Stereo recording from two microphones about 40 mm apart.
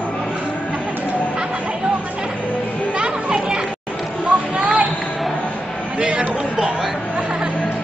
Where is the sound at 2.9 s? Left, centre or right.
Right.